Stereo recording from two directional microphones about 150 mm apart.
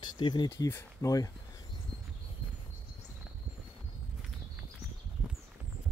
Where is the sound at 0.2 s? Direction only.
30° left (ahead or behind).